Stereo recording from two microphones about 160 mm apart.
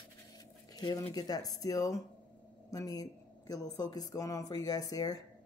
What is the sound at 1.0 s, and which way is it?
A woman's voice, 25° left (ahead or behind).